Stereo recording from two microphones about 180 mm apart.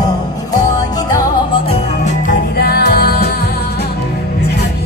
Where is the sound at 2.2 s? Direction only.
55° left (ahead or behind).